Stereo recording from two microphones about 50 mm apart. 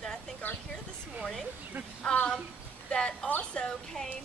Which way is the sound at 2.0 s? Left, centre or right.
Centre.